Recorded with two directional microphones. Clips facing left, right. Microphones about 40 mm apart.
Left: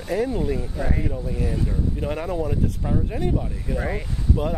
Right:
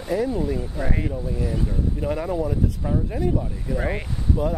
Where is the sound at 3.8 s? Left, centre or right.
Right.